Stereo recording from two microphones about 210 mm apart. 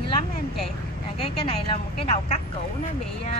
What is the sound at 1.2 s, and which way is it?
A woman's voice, 30° left (ahead or behind).